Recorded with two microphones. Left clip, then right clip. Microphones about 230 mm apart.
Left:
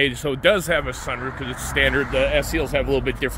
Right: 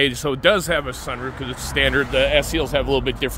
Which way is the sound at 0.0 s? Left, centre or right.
Centre.